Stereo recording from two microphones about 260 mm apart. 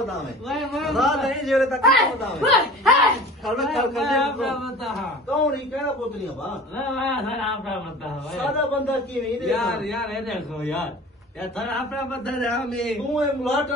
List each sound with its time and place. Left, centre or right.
0.1 s a man's voice: centre
7.0 s a man's voice: centre
12.1 s a man's voice: centre